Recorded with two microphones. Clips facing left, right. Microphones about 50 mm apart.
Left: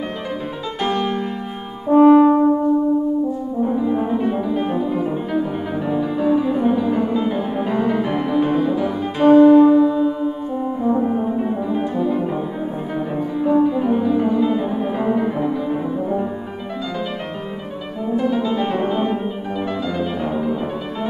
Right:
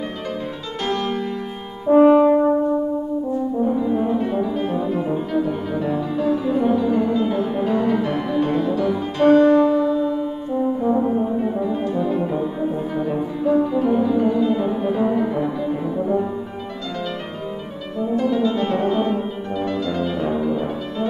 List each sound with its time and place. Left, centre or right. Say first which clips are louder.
0.8 s music: left 2 dB; centre
1.9 s french horn: left 2 dB; centre
3.6 s music: left 2 dB; centre
10.8 s brass instrument: left 3 dB; centre
13.1 s music: left 2 dB; centre
18.1 s music: even; centre